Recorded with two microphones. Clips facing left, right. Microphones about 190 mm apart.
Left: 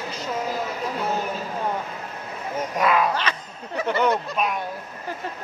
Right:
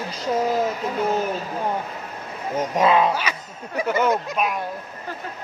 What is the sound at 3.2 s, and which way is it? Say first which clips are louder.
Speech: even; 10° right (ahead or behind).